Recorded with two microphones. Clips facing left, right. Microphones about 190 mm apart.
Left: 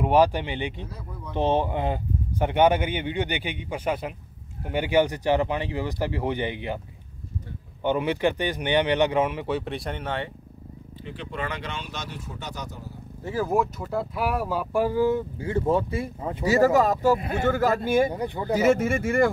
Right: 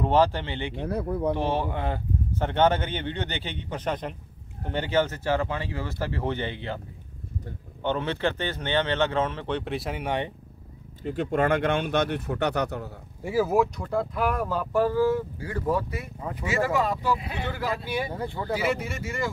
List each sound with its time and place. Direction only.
0.0 s speech: 15° left (ahead or behind)
0.7 s speech: 60° right (ahead or behind)
1.3 s speech: 20° left (ahead or behind)
7.8 s speech: 10° left (ahead or behind)
10.0 s speech: 15° right (ahead or behind)
11.1 s speech: 45° right (ahead or behind); by 12.9 s 65° right (ahead or behind)
13.2 s speech: 10° right (ahead or behind); by 16.4 s 25° left (ahead or behind)
16.4 s speech: 40° left (ahead or behind)
18.1 s speech: 15° left (ahead or behind)
18.5 s speech: 45° left (ahead or behind)